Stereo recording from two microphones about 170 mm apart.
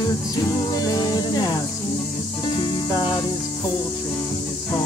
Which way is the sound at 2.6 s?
30° left (ahead or behind).